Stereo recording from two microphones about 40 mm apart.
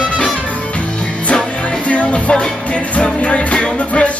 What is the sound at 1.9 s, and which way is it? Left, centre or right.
Music, left.